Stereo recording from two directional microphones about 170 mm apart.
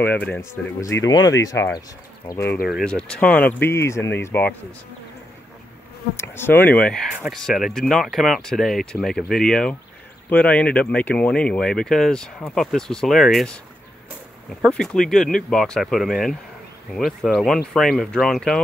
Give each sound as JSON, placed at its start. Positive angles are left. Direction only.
{"t": 0.0, "sound": "speech", "side_deg": 10}
{"t": 2.7, "sound": "speech", "side_deg": 5}
{"t": 6.1, "sound": "speech", "side_deg": 15}
{"t": 7.1, "sound": "speech", "side_deg": -5}
{"t": 14.6, "sound": "speech", "side_deg": 5}